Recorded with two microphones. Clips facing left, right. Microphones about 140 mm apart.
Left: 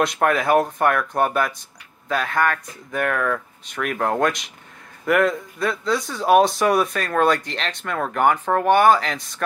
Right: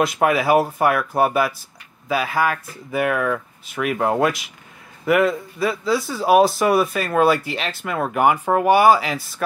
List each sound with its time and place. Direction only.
0.0 s speech: 5° right (ahead or behind)